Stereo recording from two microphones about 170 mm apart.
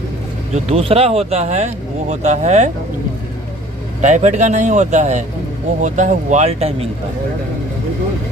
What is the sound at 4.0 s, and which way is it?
Speech, 45° right (ahead or behind).